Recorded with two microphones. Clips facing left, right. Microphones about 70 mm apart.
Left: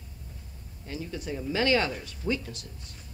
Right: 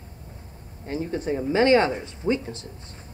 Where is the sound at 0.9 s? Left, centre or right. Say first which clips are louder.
Right 8 dB; right.